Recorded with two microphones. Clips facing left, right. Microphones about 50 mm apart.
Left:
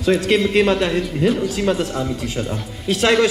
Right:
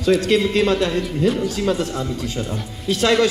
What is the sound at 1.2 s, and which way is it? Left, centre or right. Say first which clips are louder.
A man's voice: left 1 dB; centre.